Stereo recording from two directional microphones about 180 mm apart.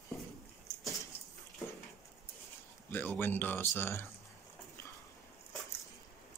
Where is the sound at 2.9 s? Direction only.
10° left (ahead or behind).